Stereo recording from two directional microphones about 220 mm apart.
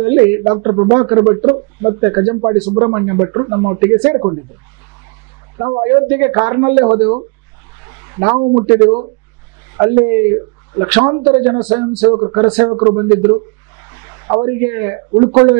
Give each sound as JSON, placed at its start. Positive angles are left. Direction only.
{"t": 0.0, "sound": "speech", "side_deg": -15}
{"t": 5.6, "sound": "speech", "side_deg": -20}
{"t": 6.8, "sound": "speech", "side_deg": -30}
{"t": 7.8, "sound": "a sound", "side_deg": -15}
{"t": 8.3, "sound": "speech", "side_deg": -25}
{"t": 9.8, "sound": "speech", "side_deg": -15}
{"t": 12.1, "sound": "speech", "side_deg": -25}
{"t": 12.4, "sound": "speech", "side_deg": -10}
{"t": 12.7, "sound": "speech", "side_deg": -25}
{"t": 13.3, "sound": "a sound", "side_deg": -15}
{"t": 15.1, "sound": "speech", "side_deg": -25}